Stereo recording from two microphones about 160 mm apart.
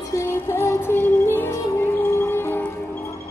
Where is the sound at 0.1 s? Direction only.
15° left (ahead or behind).